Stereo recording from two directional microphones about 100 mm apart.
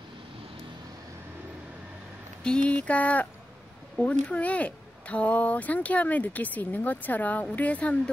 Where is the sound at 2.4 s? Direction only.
10° left (ahead or behind).